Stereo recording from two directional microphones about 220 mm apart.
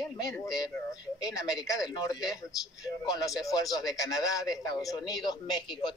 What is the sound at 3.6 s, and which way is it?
A man's voice, 15° left (ahead or behind).